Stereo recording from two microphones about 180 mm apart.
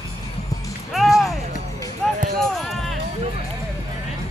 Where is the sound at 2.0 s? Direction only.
Centre (ahead or behind).